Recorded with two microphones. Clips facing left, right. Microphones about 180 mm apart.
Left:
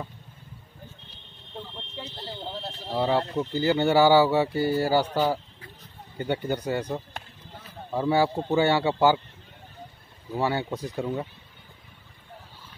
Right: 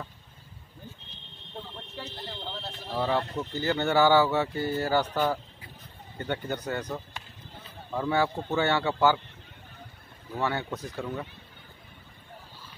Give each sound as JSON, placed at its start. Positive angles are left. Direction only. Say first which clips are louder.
{"t": 2.0, "sound": "speech", "louder": "left 2 dB", "side_deg": 25}
{"t": 2.9, "sound": "speech", "louder": "left 3 dB", "side_deg": 20}
{"t": 8.1, "sound": "speech", "louder": "left 4 dB", "side_deg": 30}
{"t": 8.5, "sound": "speech", "louder": "left 4 dB", "side_deg": 15}
{"t": 10.4, "sound": "speech", "louder": "left 3 dB", "side_deg": 15}